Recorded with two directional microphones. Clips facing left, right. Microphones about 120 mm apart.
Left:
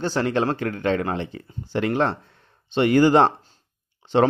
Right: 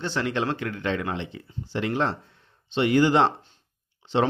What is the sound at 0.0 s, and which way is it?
Speech, 40° left (ahead or behind).